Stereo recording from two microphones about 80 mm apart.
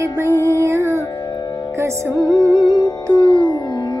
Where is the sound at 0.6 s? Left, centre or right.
Right.